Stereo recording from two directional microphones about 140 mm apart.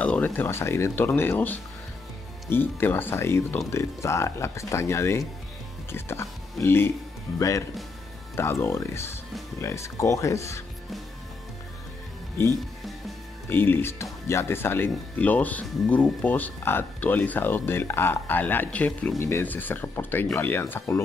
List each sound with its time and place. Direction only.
0.0 s speech: 10° left (ahead or behind)
12.4 s speech: 20° left (ahead or behind)